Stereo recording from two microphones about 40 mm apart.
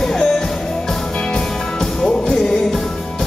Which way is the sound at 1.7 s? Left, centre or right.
Centre.